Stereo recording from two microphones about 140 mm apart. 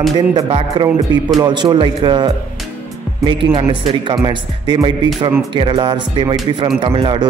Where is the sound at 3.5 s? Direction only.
45° right (ahead or behind).